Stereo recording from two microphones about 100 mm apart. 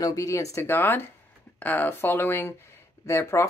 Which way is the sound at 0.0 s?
35° left (ahead or behind).